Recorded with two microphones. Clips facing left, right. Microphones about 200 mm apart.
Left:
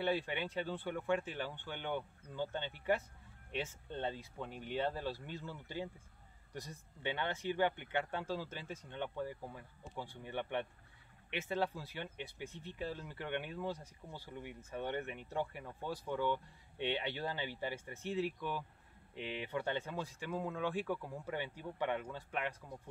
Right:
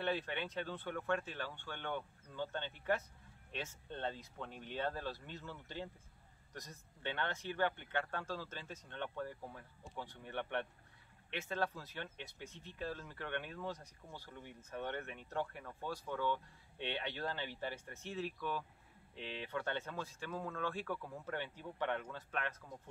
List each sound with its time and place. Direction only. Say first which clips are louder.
0.0 s speech: left 3 dB; 10° left (ahead or behind)